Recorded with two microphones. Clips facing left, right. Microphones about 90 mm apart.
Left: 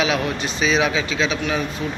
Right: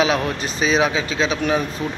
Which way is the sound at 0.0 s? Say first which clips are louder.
Right 2 dB; 35° right (ahead or behind).